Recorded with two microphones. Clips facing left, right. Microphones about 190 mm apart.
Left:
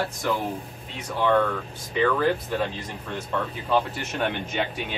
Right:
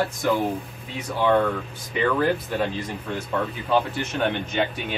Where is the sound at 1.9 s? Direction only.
10° right (ahead or behind).